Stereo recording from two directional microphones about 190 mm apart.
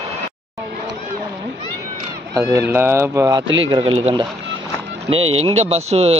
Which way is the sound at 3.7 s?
30° right (ahead or behind).